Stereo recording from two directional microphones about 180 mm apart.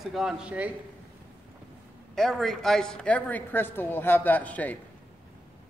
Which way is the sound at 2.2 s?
Centre (ahead or behind).